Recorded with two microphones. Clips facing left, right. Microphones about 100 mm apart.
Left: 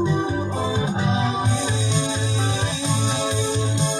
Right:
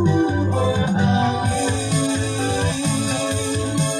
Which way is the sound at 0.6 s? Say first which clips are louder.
Right 5 dB; 20° left (ahead or behind).